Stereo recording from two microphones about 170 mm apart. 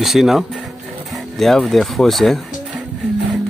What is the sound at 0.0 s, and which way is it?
Speech, centre (ahead or behind).